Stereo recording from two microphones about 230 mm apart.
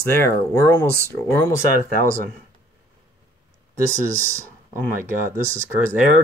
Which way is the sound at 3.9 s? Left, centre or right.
Right.